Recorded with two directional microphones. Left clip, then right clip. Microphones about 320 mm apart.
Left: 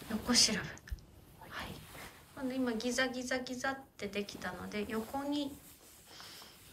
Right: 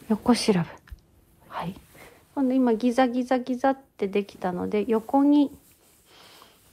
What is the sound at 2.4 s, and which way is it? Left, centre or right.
A woman's voice, centre.